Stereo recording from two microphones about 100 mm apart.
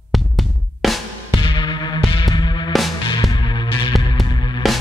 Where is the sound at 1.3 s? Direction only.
55° left (ahead or behind).